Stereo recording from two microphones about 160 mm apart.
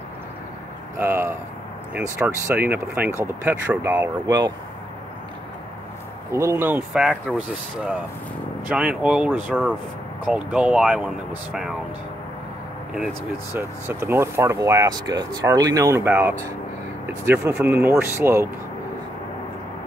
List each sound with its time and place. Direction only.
0.9 s speech: 15° right (ahead or behind)
6.3 s speech: 15° right (ahead or behind)
13.5 s speech: 15° right (ahead or behind)